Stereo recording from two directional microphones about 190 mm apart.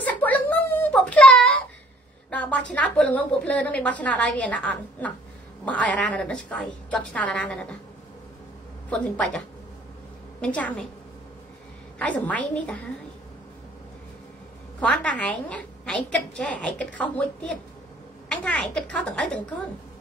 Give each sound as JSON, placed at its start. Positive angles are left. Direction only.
{"t": 0.0, "sound": "a sound", "side_deg": 10}
{"t": 2.3, "sound": "a woman's voice", "side_deg": 5}
{"t": 8.9, "sound": "a woman's voice", "side_deg": 5}
{"t": 10.4, "sound": "a woman's voice", "side_deg": 5}
{"t": 12.0, "sound": "a woman's voice", "side_deg": 5}
{"t": 14.8, "sound": "a woman's voice", "side_deg": 5}